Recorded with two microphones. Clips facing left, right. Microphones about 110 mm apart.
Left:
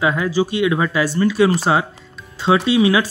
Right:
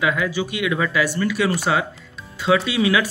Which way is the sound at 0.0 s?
30° left (ahead or behind).